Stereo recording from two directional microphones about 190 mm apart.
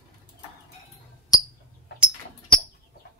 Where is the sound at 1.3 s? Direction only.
20° left (ahead or behind).